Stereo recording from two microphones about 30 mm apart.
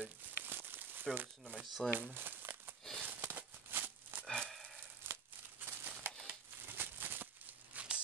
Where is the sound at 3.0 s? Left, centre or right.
Right.